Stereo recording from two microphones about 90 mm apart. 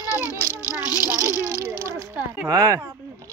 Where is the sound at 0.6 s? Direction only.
25° right (ahead or behind).